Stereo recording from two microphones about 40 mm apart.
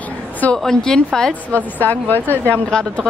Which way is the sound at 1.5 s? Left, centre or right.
Left.